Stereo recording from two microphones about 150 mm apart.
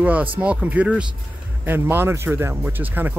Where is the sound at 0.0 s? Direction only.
10° right (ahead or behind).